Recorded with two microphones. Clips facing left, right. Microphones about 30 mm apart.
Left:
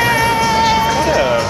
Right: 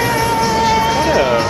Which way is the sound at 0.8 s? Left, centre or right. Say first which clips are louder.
Even; centre.